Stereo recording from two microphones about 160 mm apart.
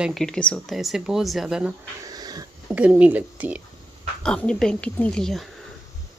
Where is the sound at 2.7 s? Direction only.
10° right (ahead or behind).